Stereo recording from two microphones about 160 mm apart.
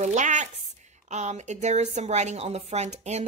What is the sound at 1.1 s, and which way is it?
Speech, 45° right (ahead or behind).